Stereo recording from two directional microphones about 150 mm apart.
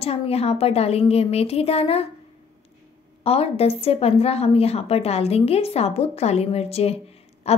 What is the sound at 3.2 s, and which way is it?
Speech, 40° left (ahead or behind).